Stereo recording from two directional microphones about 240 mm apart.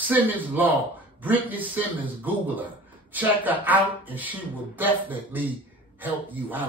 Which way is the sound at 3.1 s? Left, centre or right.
Centre.